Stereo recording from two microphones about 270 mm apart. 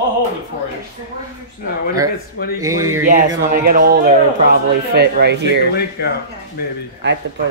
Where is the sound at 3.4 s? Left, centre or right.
Right.